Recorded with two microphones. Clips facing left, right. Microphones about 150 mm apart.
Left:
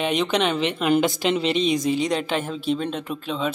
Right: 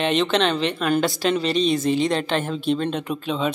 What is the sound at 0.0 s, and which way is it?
Speech, 10° left (ahead or behind).